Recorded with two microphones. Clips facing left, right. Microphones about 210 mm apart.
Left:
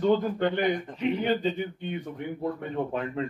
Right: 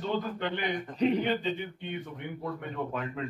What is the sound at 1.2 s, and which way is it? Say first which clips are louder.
Speech: left 3 dB; 40° left (ahead or behind).